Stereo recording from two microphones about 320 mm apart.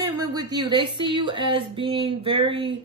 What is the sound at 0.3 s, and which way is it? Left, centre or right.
Speech, centre.